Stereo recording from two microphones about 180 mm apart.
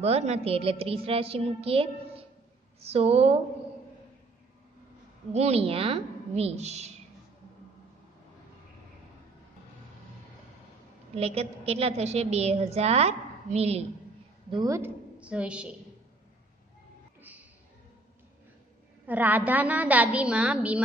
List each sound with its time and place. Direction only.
0.0 s a woman's voice: 35° right (ahead or behind)
5.3 s a woman's voice: 35° right (ahead or behind)
11.1 s a woman's voice: 35° right (ahead or behind)
14.5 s speech: 20° right (ahead or behind)
15.1 s a woman's voice: 5° right (ahead or behind)
17.2 s a sound: 10° right (ahead or behind)
19.0 s a woman's voice: 10° right (ahead or behind)